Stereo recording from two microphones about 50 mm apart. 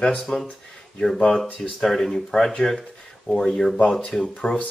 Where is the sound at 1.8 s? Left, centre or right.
Centre.